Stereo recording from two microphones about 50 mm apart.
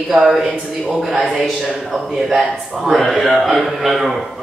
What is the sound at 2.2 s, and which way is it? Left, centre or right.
A man's voice, centre.